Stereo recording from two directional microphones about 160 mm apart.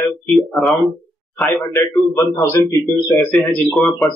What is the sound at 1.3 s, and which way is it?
A man's voice, 10° left (ahead or behind).